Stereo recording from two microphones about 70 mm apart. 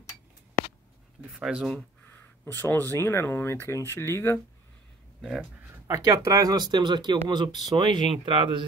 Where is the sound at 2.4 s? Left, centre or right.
Left.